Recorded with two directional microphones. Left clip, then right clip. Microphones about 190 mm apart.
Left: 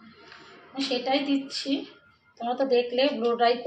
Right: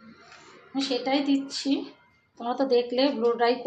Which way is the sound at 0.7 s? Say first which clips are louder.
Even; 45° right (ahead or behind).